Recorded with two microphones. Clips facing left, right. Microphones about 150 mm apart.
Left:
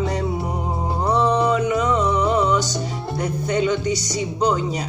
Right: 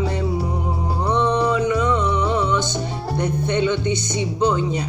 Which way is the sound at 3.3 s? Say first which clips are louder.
Even; 25° right (ahead or behind).